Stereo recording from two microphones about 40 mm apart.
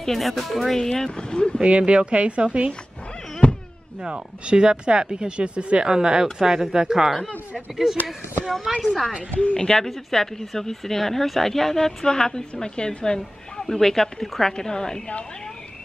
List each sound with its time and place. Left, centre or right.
0.0 s speech: centre
0.7 s speech: centre
1.6 s speech: right
3.4 s a sound: left
4.0 s speech: right
5.9 s speech: centre
7.5 s speech: centre
9.4 s speech: left
9.8 s a woman's voice: centre